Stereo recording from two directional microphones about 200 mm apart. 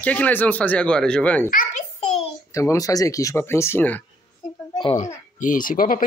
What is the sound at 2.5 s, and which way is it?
Speech, 15° left (ahead or behind).